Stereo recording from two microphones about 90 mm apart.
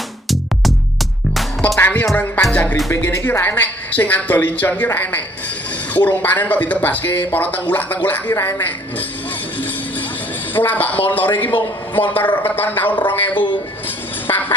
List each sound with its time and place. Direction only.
1.8 s music: 20° left (ahead or behind)
2.9 s speech: 35° left (ahead or behind)
3.3 s speech: 20° left (ahead or behind)
10.5 s speech: 20° left (ahead or behind)